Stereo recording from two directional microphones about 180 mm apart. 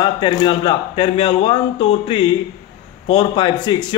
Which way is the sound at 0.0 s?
25° left (ahead or behind).